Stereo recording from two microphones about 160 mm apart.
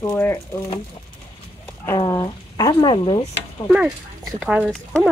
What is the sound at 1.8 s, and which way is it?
Speech, 20° left (ahead or behind).